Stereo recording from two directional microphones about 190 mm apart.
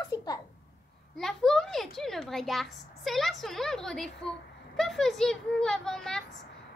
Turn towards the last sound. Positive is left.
turn(degrees=5)  # may be behind; listen again after turning